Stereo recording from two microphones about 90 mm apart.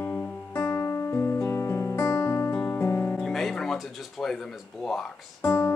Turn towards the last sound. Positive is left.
turn(degrees=20)  # may be behind; listen again after turning